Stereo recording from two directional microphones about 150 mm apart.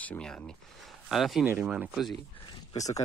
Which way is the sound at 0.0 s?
5° left (ahead or behind).